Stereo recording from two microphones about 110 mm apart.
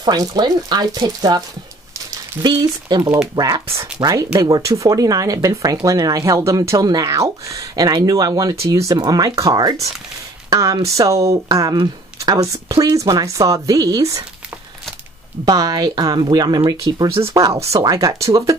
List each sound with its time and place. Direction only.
0.0 s speech: 35° right (ahead or behind)
2.4 s speech: 40° right (ahead or behind)
10.5 s a sound: 30° right (ahead or behind)
11.0 s speech: 30° right (ahead or behind)
15.4 s speech: 35° right (ahead or behind)